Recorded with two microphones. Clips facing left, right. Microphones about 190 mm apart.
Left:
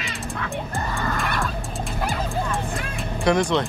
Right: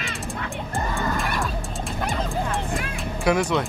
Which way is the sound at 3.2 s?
5° right (ahead or behind).